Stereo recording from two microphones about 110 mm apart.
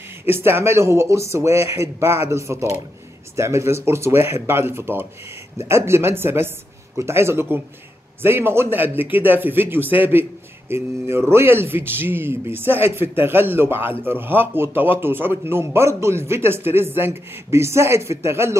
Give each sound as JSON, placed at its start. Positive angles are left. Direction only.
{"t": 0.2, "sound": "a man's voice", "side_deg": -20}